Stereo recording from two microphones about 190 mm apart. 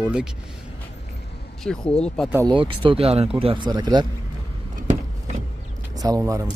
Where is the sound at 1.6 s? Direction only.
5° left (ahead or behind).